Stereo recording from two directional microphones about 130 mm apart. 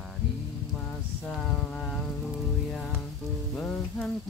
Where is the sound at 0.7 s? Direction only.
5° left (ahead or behind).